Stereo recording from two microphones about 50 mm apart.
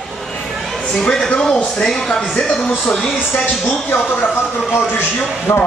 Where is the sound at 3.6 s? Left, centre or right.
Left.